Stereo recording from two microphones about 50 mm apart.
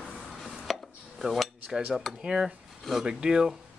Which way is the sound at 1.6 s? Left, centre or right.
Centre.